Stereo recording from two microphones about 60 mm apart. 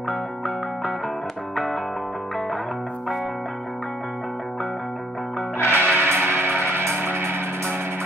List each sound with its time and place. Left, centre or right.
1.5 s music: centre
5.6 s music: left
5.9 s music: right